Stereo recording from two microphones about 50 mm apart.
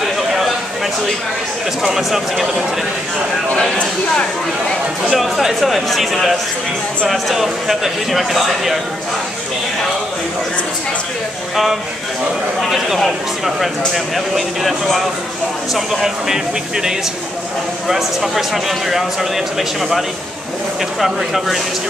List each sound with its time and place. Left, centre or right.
0.0 s a sound: centre
2.0 s speech: centre
3.5 s speech: left
5.0 s speech: centre
12.6 s speech: centre
21.0 s speech: centre